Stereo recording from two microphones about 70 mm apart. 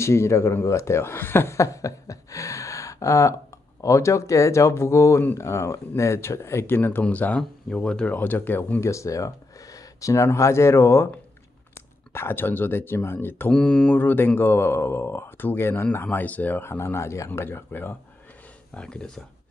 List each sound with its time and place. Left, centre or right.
0.0 s speech: left; by 8.1 s centre
8.1 s speech: left
8.8 s speech: left
12.1 s speech: left
13.5 s speech: centre
13.9 s speech: left
18.7 s speech: centre